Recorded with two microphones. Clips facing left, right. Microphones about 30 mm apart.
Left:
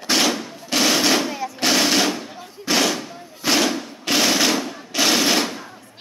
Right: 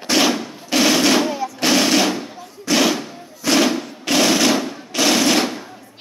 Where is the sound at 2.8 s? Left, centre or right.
Centre.